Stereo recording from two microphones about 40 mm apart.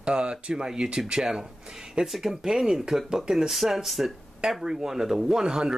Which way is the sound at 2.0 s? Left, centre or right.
Centre.